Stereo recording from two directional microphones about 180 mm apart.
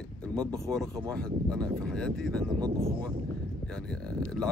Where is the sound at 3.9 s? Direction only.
5° left (ahead or behind).